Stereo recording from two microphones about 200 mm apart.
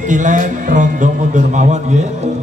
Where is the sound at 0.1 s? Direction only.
40° right (ahead or behind).